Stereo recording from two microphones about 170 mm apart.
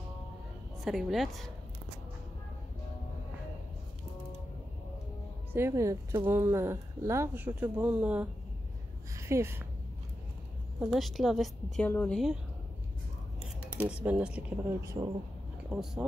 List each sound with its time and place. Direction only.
0.8 s a woman's voice: centre (ahead or behind)
5.5 s speech: 15° right (ahead or behind)
10.8 s a woman's voice: centre (ahead or behind)
13.4 s scissors: 5° right (ahead or behind)
14.0 s speech: 10° right (ahead or behind)
15.7 s a woman's voice: 5° right (ahead or behind)